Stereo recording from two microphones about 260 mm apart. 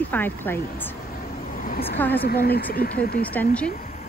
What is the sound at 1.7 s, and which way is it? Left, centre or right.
Speech, left.